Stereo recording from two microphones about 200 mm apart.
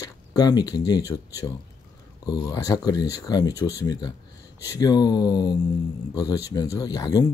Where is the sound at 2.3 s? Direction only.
15° left (ahead or behind).